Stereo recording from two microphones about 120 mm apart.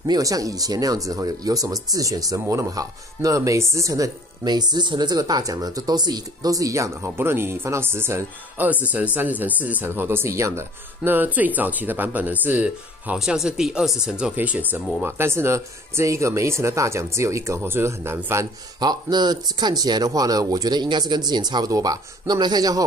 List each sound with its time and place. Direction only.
0.0 s speech: 30° right (ahead or behind)
18.8 s speech: 35° right (ahead or behind)